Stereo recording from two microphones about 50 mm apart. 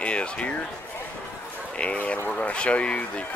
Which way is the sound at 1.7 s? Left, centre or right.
Left.